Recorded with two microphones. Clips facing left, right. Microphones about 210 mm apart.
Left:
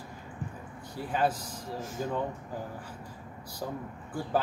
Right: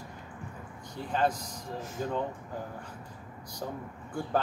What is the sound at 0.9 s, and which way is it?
Speech, 5° left (ahead or behind).